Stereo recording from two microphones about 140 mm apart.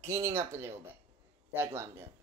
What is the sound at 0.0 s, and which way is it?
Speech, 20° right (ahead or behind).